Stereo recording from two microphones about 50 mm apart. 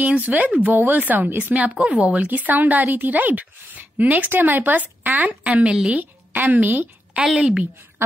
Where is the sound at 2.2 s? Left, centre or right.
Right.